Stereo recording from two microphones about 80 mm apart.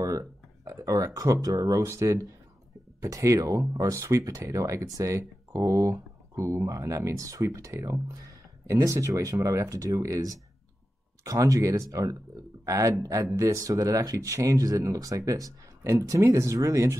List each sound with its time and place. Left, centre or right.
0.0 s speech: right